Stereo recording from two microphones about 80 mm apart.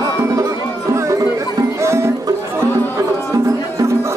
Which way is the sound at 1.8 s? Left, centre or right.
Right.